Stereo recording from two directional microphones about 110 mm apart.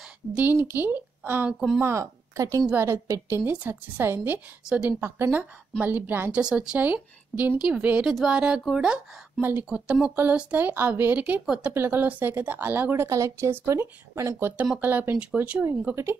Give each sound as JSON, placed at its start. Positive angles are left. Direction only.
{"t": 0.0, "sound": "a sound", "side_deg": -10}
{"t": 0.5, "sound": "a woman's voice", "side_deg": -20}
{"t": 9.4, "sound": "a woman's voice", "side_deg": -20}
{"t": 9.7, "sound": "a woman's voice", "side_deg": -10}